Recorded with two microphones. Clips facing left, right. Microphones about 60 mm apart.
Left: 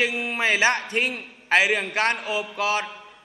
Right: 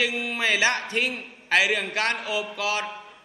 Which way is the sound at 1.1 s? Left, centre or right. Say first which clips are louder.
Left 1 dB; centre.